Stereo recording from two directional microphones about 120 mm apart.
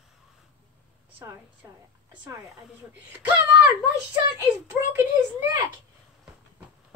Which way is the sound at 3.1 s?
10° right (ahead or behind).